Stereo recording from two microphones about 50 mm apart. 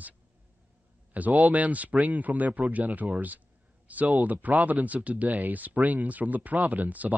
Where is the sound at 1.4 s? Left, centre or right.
Right.